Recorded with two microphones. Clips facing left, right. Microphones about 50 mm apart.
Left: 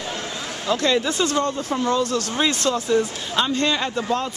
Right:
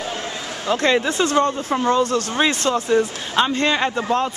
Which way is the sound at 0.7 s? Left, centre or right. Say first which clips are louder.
Right 2 dB; right.